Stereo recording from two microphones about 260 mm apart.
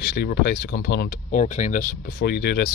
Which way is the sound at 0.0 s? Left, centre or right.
Left.